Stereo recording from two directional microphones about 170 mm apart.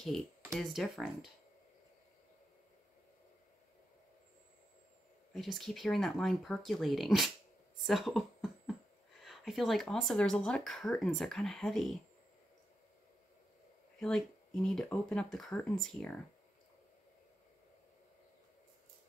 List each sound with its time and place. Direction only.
0.5 s speech: centre (ahead or behind)
5.3 s speech: centre (ahead or behind)
7.8 s a sound: centre (ahead or behind)
9.2 s speech: centre (ahead or behind)
13.9 s speech: 5° left (ahead or behind)